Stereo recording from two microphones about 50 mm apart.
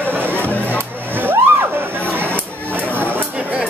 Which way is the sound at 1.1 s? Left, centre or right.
Right.